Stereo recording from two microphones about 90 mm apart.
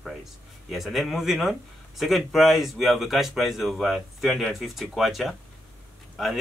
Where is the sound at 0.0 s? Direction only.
Centre (ahead or behind).